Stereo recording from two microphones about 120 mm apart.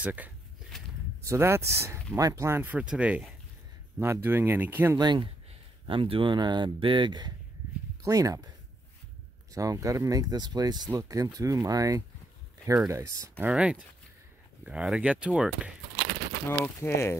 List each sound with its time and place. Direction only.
0.0 s speech: 10° right (ahead or behind)
0.7 s a sound: 5° left (ahead or behind)
1.2 s speech: 25° right (ahead or behind)
4.9 s speech: 40° right (ahead or behind)
9.5 s speech: 30° right (ahead or behind)
13.5 s speech: 10° right (ahead or behind)
16.4 s speech: 20° left (ahead or behind)